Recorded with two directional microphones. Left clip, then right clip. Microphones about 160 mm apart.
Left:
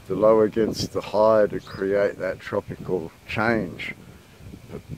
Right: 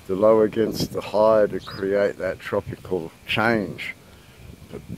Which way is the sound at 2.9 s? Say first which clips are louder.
Right 3 dB; 25° right (ahead or behind).